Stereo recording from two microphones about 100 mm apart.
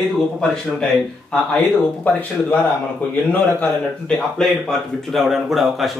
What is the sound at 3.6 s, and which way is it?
Speech, 10° left (ahead or behind).